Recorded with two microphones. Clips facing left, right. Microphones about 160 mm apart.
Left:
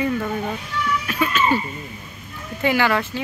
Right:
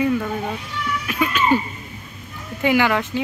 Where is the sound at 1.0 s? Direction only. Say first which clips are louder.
Right 3 dB; 15° right (ahead or behind).